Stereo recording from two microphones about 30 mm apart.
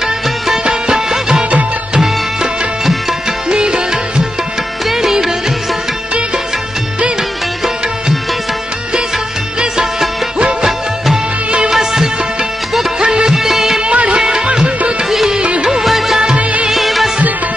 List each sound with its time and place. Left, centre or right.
2.8 s tabla: centre
3.4 s music: right
4.8 s music: centre
13.0 s music: right
13.3 s music of bollywood: centre
13.9 s music: right
14.2 s music: right
15.3 s music: right
15.8 s music: centre